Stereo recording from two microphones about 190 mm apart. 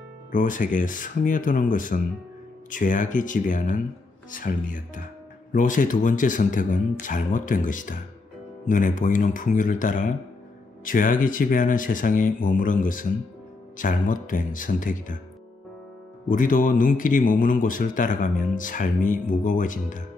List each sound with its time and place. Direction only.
0.3 s speech: 45° left (ahead or behind)
16.3 s speech: 45° left (ahead or behind)